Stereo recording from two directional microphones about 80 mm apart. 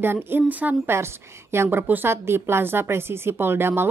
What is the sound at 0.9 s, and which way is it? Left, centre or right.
A woman's voice, right.